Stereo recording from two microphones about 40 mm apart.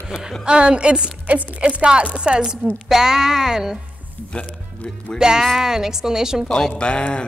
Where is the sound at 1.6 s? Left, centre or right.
Right.